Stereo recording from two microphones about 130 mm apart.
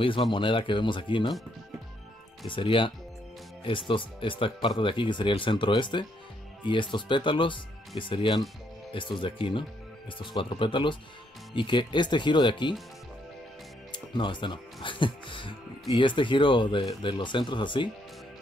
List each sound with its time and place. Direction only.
0.3 s speech: 40° left (ahead or behind)
2.4 s speech: 40° left (ahead or behind)
13.9 s speech: 40° left (ahead or behind)